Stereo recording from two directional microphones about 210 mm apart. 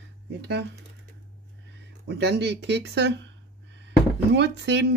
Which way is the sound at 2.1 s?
55° right (ahead or behind).